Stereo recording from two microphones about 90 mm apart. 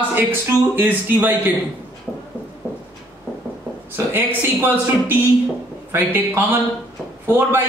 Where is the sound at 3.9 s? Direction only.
25° right (ahead or behind).